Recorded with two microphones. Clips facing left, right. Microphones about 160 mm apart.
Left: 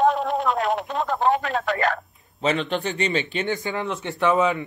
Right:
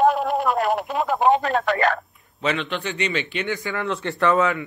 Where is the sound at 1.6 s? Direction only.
75° right (ahead or behind).